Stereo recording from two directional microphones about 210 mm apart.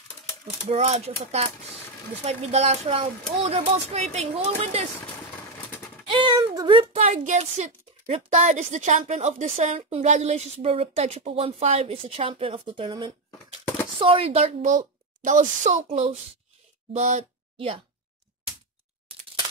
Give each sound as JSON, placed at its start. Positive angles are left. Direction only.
{"t": 0.7, "sound": "a woman's voice", "side_deg": -30}
{"t": 6.0, "sound": "a woman's voice", "side_deg": -25}